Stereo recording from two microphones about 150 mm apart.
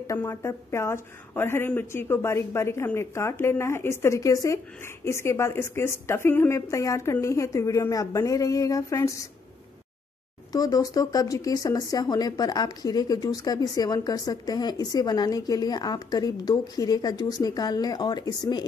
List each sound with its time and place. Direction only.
0.0 s speech: 20° left (ahead or behind)
10.5 s speech: 25° left (ahead or behind)